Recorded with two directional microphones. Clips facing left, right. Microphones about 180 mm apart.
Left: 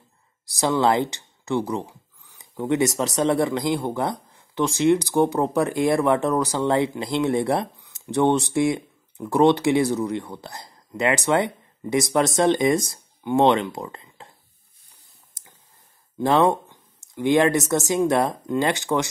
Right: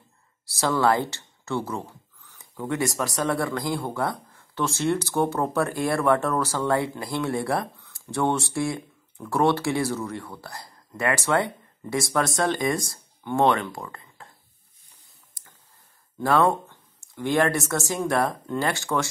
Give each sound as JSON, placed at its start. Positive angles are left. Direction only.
{"t": 0.5, "sound": "speech", "side_deg": 15}
{"t": 16.2, "sound": "speech", "side_deg": 20}